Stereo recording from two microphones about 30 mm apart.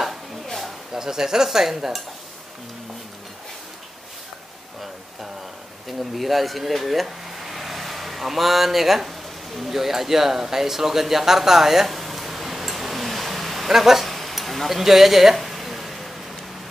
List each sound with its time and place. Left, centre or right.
0.9 s speech: centre
5.9 s speech: centre
14.0 s a sound: centre